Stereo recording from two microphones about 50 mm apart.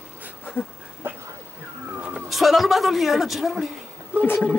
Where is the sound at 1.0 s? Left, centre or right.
Right.